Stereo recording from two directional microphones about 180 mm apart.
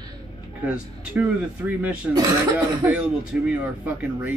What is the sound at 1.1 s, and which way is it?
Speech, 10° right (ahead or behind).